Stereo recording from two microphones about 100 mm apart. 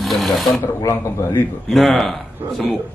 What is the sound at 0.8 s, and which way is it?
Speech, 30° left (ahead or behind).